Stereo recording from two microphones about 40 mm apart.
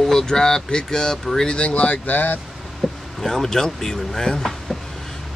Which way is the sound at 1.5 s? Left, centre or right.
Left.